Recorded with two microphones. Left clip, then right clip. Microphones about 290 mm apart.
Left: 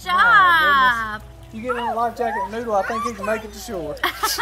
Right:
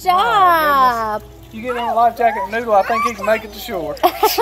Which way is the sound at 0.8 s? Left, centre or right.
Right.